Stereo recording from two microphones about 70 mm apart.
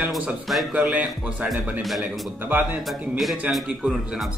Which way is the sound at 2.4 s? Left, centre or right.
Right.